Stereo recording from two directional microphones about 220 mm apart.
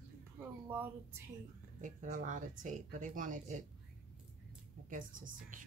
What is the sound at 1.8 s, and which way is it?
Speech, 35° right (ahead or behind).